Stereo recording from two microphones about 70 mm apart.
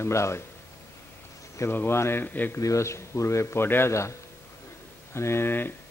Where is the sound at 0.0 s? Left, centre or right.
Left.